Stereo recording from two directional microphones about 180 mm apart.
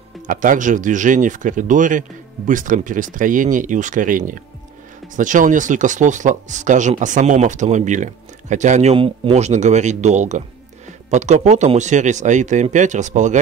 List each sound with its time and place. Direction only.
0.3 s speech: 45° right (ahead or behind)